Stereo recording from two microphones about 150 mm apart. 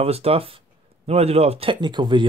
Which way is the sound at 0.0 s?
40° right (ahead or behind).